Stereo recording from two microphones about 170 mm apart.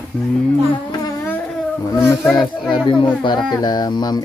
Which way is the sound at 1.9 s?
15° left (ahead or behind).